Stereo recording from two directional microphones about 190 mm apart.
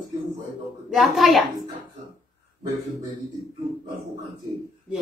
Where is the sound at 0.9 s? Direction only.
Centre (ahead or behind).